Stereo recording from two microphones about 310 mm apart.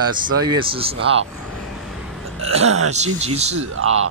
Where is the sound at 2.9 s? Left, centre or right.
Right.